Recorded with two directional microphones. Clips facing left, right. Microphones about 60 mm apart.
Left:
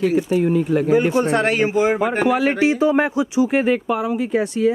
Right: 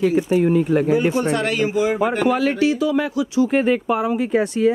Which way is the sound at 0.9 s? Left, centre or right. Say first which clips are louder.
Left 2 dB; left.